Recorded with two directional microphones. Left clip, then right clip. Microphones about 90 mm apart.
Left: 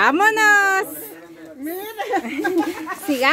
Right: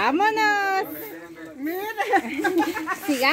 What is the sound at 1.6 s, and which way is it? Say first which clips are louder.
Speech: right 1 dB; centre (ahead or behind).